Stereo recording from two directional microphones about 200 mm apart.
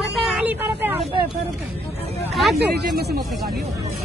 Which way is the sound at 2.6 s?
55° right (ahead or behind).